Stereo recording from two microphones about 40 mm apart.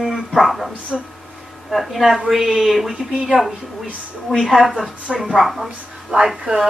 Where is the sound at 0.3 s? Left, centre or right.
Centre.